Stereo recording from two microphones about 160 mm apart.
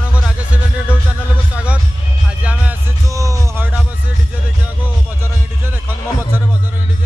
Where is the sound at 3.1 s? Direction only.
20° right (ahead or behind).